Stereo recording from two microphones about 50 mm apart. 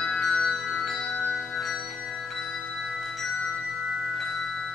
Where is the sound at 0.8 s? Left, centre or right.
Centre.